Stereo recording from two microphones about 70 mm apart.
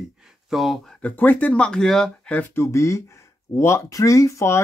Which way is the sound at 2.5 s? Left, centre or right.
Left.